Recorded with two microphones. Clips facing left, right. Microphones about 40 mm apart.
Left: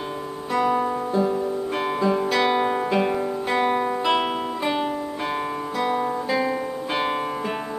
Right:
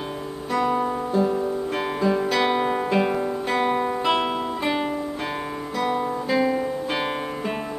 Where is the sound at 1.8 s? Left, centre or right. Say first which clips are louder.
Left 1 dB; centre.